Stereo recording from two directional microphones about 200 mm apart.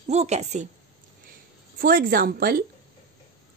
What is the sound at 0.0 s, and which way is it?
Speech, 35° right (ahead or behind).